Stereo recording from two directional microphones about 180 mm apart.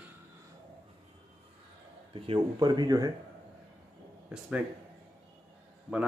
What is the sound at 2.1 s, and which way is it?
Speech, 30° right (ahead or behind).